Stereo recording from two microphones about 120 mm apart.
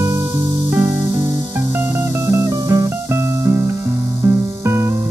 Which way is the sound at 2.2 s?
20° right (ahead or behind).